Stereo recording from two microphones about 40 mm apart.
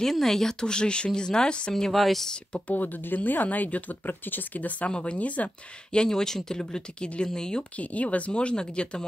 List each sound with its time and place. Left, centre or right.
0.0 s speech: centre
1.7 s speech: centre
2.7 s speech: left
6.0 s speech: centre
7.7 s speech: left
8.3 s speech: left